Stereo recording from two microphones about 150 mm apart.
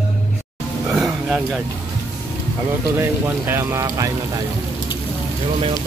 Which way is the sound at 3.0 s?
15° right (ahead or behind).